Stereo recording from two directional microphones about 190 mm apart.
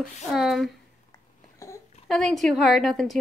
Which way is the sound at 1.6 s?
15° left (ahead or behind).